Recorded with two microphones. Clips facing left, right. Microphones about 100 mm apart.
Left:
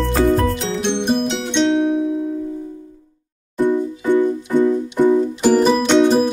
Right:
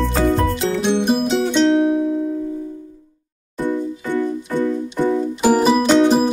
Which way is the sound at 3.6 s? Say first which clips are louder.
Left 4 dB; 20° left (ahead or behind).